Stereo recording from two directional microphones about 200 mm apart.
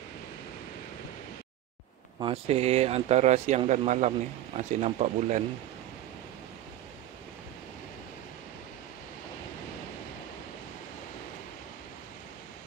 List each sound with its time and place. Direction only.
2.1 s speech: 25° right (ahead or behind)